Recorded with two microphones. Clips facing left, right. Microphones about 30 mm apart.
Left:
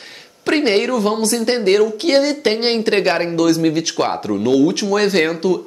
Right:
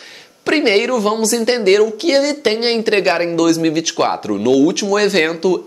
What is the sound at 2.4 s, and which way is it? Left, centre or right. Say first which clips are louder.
Speech: right 1 dB; centre.